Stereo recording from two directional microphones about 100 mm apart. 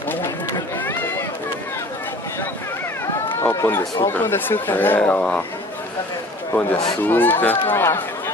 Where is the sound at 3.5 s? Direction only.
30° left (ahead or behind); by 5.4 s 15° left (ahead or behind).